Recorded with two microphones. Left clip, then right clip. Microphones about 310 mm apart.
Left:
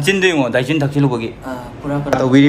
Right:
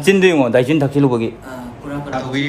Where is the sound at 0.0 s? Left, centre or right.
Right.